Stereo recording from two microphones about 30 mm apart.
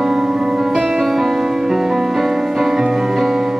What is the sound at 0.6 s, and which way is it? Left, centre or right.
Music, centre.